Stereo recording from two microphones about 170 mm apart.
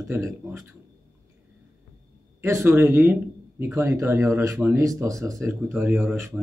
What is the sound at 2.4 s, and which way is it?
Speech, 15° right (ahead or behind).